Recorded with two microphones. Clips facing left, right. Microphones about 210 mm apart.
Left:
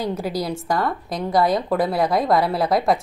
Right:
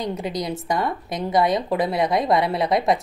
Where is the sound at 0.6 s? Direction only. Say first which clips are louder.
Left 1 dB; 20° right (ahead or behind).